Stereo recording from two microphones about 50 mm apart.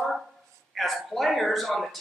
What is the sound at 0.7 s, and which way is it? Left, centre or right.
Speech, centre.